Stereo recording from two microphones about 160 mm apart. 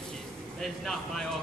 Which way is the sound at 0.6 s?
Centre (ahead or behind).